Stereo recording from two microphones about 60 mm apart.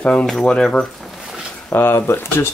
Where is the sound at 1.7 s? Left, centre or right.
Left.